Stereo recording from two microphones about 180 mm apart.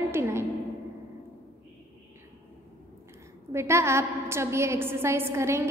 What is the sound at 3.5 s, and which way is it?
A woman's voice, 15° right (ahead or behind).